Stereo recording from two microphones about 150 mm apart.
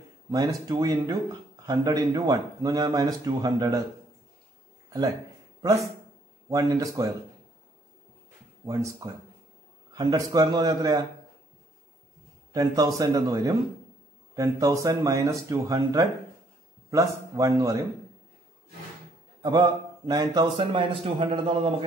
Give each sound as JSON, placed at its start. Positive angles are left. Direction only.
{"t": 0.3, "sound": "speech", "side_deg": -25}
{"t": 6.5, "sound": "speech", "side_deg": -25}
{"t": 8.6, "sound": "speech", "side_deg": -20}
{"t": 12.5, "sound": "speech", "side_deg": -25}
{"t": 19.4, "sound": "a man's voice", "side_deg": -30}